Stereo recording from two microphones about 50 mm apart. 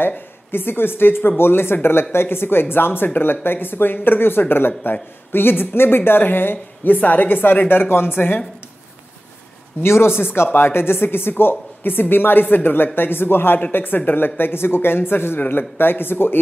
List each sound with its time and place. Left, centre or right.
0.5 s speech: left
9.8 s speech: left